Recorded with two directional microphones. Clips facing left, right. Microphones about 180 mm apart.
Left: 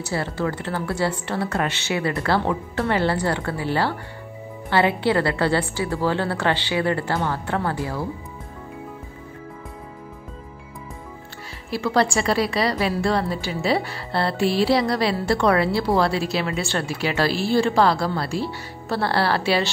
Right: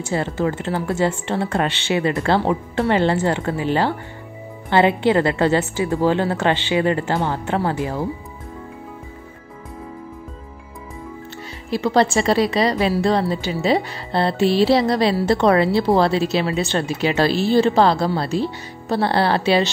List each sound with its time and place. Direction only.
0.1 s a woman's voice: 20° right (ahead or behind)
11.7 s a woman's voice: 20° right (ahead or behind)